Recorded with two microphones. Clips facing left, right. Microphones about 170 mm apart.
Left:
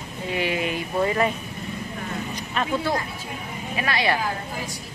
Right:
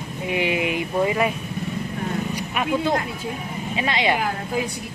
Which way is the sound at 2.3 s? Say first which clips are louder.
Left 1 dB; 10° right (ahead or behind).